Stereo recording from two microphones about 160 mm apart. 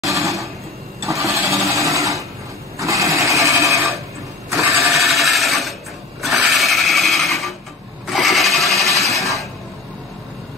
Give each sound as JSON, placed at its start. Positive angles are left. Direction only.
{"t": 1.0, "sound": "sewing machine", "side_deg": -20}
{"t": 4.5, "sound": "a sound", "side_deg": -20}
{"t": 4.9, "sound": "sewing machine", "side_deg": 0}
{"t": 6.2, "sound": "filing", "side_deg": 0}
{"t": 8.1, "sound": "sewing machine", "side_deg": 0}